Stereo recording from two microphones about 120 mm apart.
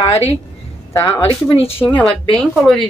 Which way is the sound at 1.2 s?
55° left (ahead or behind).